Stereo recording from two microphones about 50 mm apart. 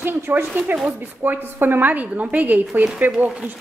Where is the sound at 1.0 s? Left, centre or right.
Right.